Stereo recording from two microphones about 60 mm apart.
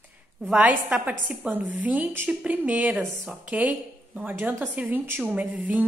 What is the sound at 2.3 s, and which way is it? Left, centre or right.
A woman's voice, centre.